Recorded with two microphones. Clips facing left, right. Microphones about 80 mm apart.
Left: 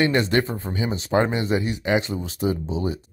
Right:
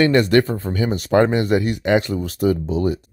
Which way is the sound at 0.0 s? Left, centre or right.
Right.